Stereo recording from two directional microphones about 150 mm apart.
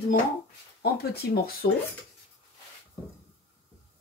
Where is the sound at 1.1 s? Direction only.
90° left.